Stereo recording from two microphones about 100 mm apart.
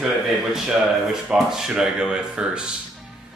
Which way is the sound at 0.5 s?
5° right (ahead or behind).